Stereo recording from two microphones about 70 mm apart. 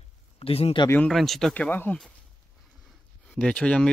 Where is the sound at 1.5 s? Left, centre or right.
Centre.